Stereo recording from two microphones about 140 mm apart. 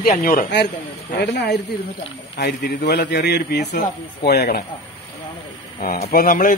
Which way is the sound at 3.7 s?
90° left.